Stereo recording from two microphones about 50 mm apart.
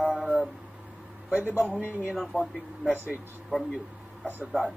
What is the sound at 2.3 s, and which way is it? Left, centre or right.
Speech, right.